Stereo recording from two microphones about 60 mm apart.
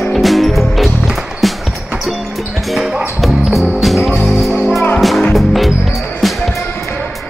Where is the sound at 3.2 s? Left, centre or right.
Centre.